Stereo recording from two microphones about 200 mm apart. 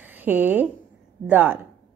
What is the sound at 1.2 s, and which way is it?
Speech, 10° right (ahead or behind).